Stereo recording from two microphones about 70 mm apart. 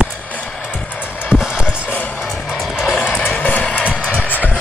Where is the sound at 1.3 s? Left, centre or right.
Centre.